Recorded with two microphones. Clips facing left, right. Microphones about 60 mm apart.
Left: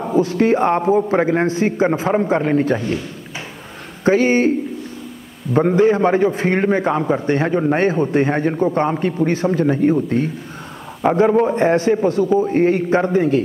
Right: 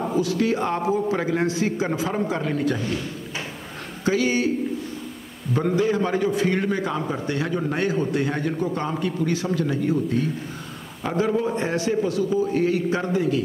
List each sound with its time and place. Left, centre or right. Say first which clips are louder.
0.2 s a man's voice: left 9 dB; left
4.0 s a man's voice: left 7 dB; left
5.5 s a man's voice: left 7 dB; left